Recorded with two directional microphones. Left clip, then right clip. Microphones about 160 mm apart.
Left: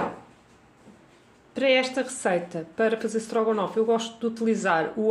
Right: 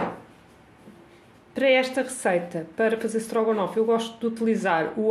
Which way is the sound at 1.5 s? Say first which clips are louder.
Right 1 dB; centre (ahead or behind).